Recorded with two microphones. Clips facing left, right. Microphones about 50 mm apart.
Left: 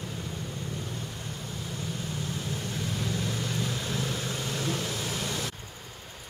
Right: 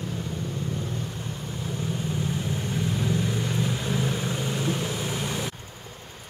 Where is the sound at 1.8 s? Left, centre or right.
Right.